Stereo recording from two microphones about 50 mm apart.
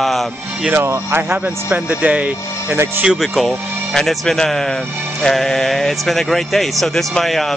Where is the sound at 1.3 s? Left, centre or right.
Right.